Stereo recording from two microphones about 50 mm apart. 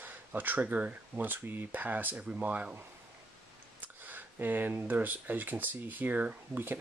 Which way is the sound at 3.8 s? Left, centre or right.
Right.